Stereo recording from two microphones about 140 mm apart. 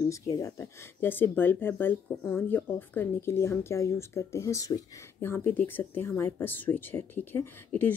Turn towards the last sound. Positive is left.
turn(degrees=15)  # may be behind; listen again after turning